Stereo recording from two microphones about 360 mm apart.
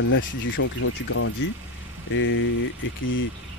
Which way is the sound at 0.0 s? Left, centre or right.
Left.